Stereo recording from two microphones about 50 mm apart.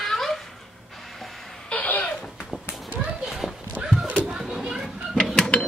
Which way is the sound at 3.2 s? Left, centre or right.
Centre.